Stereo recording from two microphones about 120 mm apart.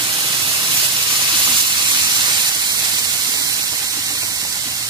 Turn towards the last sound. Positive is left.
turn(degrees=-30)  # may be behind; listen again after turning